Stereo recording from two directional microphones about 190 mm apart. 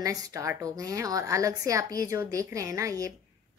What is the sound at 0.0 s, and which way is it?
A woman's voice, 15° right (ahead or behind).